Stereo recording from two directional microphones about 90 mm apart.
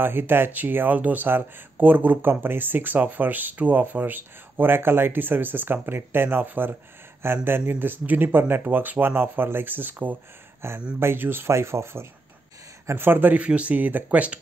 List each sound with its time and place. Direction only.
0.0 s speech: 25° right (ahead or behind)